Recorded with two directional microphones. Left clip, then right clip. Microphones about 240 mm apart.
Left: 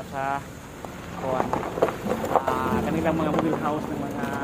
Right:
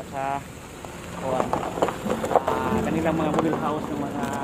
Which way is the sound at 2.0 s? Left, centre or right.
Centre.